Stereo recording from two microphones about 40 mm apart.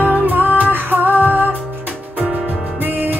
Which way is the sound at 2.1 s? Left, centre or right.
Right.